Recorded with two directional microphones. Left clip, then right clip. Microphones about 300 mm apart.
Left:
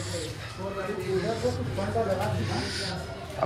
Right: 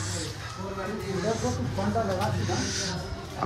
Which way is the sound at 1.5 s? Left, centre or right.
Centre.